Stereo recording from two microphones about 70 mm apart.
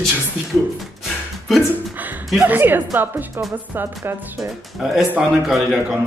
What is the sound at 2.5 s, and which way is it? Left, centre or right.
Speech, right.